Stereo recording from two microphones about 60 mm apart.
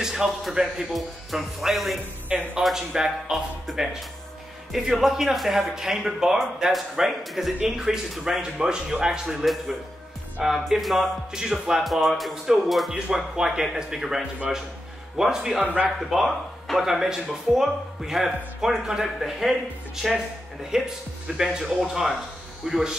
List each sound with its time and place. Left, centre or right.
0.0 s speech: centre
2.2 s speech: right
2.6 s speech: centre
15.6 s speech: right
16.0 s speech: centre
20.7 s speech: centre